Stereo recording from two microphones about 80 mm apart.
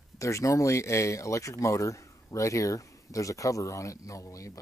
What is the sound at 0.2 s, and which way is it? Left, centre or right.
Speech, left.